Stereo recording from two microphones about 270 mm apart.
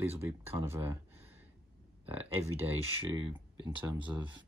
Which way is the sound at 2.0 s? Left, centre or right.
Centre.